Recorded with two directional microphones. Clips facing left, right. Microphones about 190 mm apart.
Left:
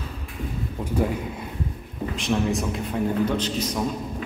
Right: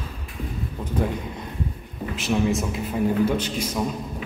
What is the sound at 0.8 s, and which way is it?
A man's voice, 10° left (ahead or behind).